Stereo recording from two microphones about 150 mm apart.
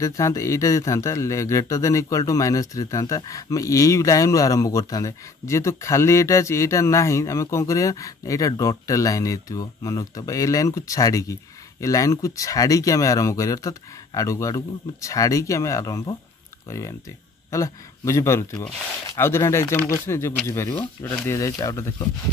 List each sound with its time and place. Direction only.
0.0 s speech: 20° left (ahead or behind)